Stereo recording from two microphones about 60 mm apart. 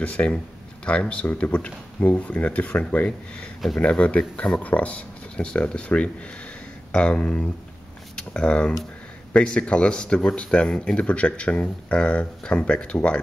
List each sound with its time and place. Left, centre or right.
0.0 s speech: left